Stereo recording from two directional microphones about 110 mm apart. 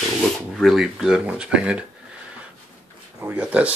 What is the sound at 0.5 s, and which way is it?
Speech, centre (ahead or behind).